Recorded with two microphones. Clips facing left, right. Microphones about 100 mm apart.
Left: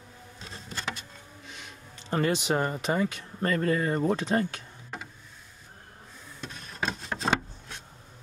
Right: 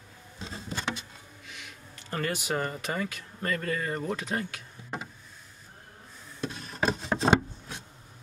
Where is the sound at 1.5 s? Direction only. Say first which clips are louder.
Even; 25° left (ahead or behind).